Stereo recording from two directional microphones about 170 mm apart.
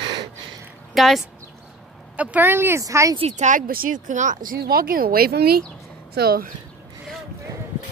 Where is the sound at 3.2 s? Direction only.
40° right (ahead or behind); by 6.5 s 60° right (ahead or behind).